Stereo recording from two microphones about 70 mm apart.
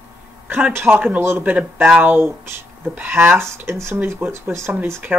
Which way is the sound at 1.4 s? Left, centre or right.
Right.